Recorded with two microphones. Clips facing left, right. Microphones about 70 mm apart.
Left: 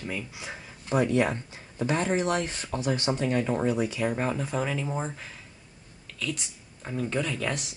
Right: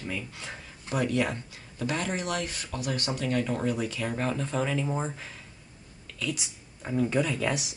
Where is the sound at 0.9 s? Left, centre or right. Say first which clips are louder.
Left 3 dB; left.